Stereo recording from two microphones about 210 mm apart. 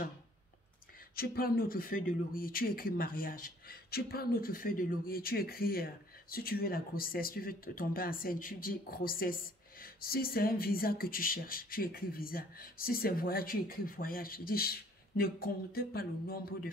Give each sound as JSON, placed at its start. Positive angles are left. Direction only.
{"t": 1.1, "sound": "speech", "side_deg": 45}